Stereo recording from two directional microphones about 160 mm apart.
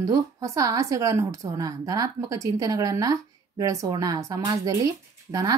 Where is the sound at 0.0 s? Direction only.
20° right (ahead or behind).